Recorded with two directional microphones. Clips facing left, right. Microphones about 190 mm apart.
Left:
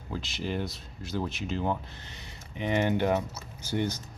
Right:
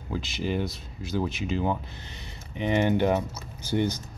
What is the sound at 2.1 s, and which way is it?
Speech, 25° right (ahead or behind).